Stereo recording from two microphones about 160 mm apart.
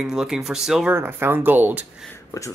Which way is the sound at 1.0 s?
15° right (ahead or behind).